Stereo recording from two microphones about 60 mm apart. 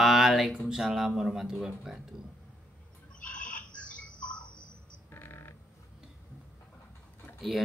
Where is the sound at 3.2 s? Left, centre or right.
Left.